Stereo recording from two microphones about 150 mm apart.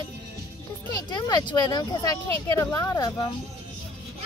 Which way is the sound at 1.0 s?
30° left (ahead or behind).